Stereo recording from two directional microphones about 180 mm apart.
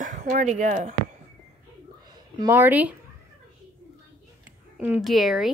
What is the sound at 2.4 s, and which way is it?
Speech, 10° right (ahead or behind).